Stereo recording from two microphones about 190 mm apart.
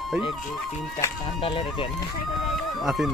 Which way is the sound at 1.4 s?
30° left (ahead or behind).